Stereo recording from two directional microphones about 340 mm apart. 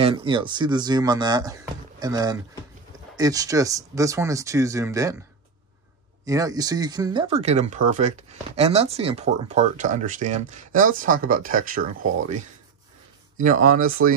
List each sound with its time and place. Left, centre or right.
0.0 s speech: centre
6.2 s speech: centre
13.4 s speech: right